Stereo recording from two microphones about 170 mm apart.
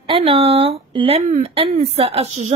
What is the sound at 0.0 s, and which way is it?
Speech, 35° right (ahead or behind).